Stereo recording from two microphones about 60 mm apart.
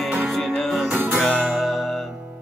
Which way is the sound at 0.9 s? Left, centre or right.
Right.